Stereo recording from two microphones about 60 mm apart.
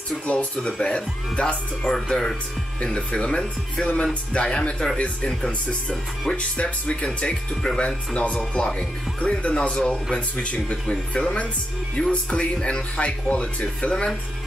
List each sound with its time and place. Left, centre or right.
0.1 s speech: left
6.3 s speech: centre